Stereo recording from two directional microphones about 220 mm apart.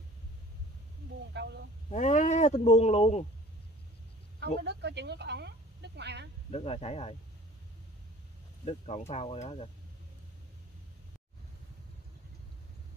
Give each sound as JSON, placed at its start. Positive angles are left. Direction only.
{"t": 1.3, "sound": "speech", "side_deg": -50}
{"t": 1.9, "sound": "speech", "side_deg": 30}
{"t": 4.6, "sound": "a woman's voice", "side_deg": -50}
{"t": 6.5, "sound": "speech", "side_deg": 30}
{"t": 8.6, "sound": "speech", "side_deg": 30}